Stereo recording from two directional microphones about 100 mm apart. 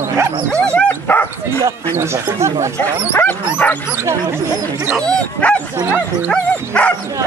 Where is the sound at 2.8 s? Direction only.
20° left (ahead or behind).